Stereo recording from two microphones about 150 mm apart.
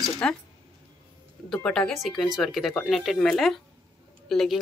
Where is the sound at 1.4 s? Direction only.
5° left (ahead or behind).